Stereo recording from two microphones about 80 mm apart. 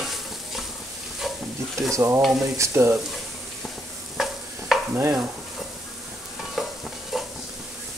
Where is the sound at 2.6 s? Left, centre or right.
Right.